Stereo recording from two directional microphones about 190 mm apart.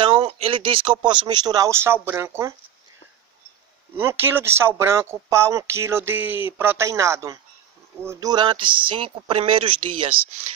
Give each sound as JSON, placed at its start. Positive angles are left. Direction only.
{"t": 0.0, "sound": "speech", "side_deg": -30}
{"t": 3.9, "sound": "speech", "side_deg": -10}